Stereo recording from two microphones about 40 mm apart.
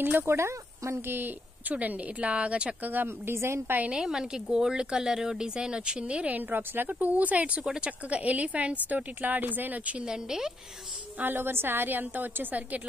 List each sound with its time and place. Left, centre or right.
0.3 s speech: right
1.0 s a woman's voice: right
1.7 s a woman's voice: right
2.8 s speech: right
3.1 s speech: right
3.9 s speech: centre
6.5 s a woman's voice: right
6.9 s a woman's voice: right
10.0 s a woman's voice: centre
11.3 s a woman's voice: right
11.9 s speech: right